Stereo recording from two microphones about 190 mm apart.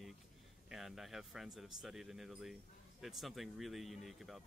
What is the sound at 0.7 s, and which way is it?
Speech, centre (ahead or behind).